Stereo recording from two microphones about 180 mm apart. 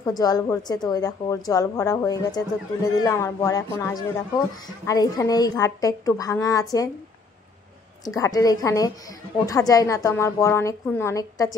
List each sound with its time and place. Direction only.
0.0 s a woman's voice: 20° left (ahead or behind)
8.0 s a woman's voice: 20° left (ahead or behind)